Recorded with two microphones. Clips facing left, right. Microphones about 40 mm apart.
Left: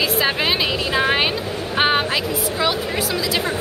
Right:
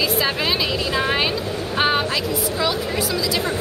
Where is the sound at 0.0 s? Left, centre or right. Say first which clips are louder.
Left 1 dB; left.